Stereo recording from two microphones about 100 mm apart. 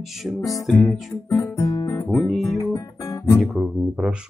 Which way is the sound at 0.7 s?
Centre (ahead or behind).